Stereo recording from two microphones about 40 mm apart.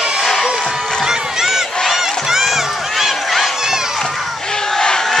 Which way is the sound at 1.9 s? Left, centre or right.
Centre.